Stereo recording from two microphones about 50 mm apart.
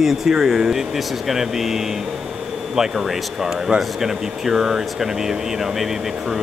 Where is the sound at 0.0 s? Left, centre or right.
Centre.